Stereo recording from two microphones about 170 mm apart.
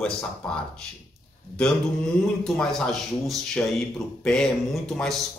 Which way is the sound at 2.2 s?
5° left (ahead or behind).